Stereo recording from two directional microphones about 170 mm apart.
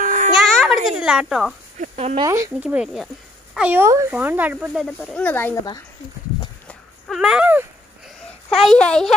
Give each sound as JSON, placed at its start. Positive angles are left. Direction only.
{"t": 0.0, "sound": "a sound", "side_deg": -50}
{"t": 0.4, "sound": "a sound", "side_deg": 0}
{"t": 0.8, "sound": "speech", "side_deg": -5}
{"t": 1.8, "sound": "speech", "side_deg": -40}
{"t": 2.1, "sound": "speech", "side_deg": -20}
{"t": 2.5, "sound": "speech", "side_deg": -5}
{"t": 4.8, "sound": "speech", "side_deg": 10}
{"t": 6.7, "sound": "a sound", "side_deg": 0}
{"t": 8.5, "sound": "speech", "side_deg": 5}